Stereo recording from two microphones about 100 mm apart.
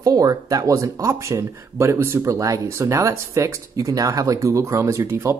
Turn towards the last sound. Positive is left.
turn(degrees=-30)  # may be behind; listen again after turning